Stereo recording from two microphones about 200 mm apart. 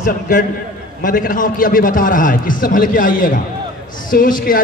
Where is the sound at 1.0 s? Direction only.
40° left (ahead or behind).